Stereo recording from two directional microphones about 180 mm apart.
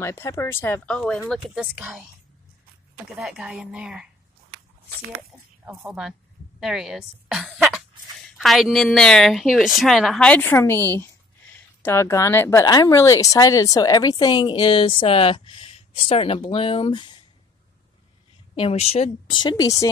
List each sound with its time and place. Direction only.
0.0 s a woman's voice: 15° left (ahead or behind); by 2.0 s 5° right (ahead or behind)
3.2 s a woman's voice: 5° right (ahead or behind)
5.9 s a woman's voice: centre (ahead or behind); by 17.1 s 30° left (ahead or behind)
18.6 s speech: 35° left (ahead or behind)
19.4 s speech: 20° left (ahead or behind)